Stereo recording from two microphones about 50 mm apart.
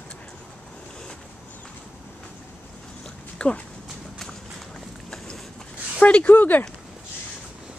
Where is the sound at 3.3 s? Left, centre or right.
Left.